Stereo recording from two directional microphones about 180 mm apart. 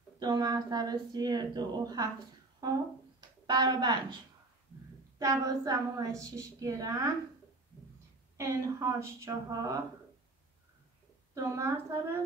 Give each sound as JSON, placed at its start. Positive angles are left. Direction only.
{"t": 0.2, "sound": "speech", "side_deg": -20}
{"t": 3.2, "sound": "speech", "side_deg": -25}
{"t": 5.2, "sound": "speech", "side_deg": -20}
{"t": 8.4, "sound": "a woman's voice", "side_deg": -15}
{"t": 11.3, "sound": "a woman's voice", "side_deg": -15}